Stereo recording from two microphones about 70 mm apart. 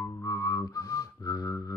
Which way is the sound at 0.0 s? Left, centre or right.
Left.